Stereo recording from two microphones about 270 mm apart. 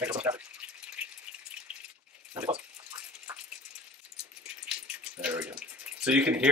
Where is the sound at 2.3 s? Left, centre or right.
Centre.